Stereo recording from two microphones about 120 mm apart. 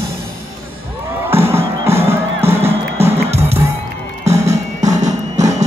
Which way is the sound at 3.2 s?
60° right (ahead or behind).